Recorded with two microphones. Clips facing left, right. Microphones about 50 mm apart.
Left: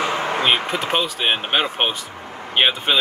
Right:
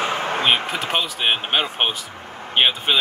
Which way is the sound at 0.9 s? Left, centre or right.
Centre.